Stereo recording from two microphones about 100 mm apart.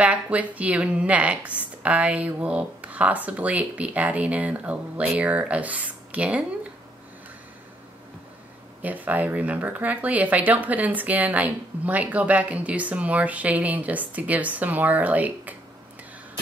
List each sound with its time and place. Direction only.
0.0 s speech: 15° right (ahead or behind)
8.8 s speech: 15° right (ahead or behind)